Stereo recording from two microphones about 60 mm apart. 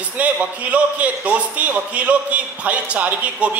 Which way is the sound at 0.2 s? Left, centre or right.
Right.